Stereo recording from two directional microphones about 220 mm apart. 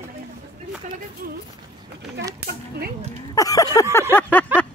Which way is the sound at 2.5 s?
45° right (ahead or behind).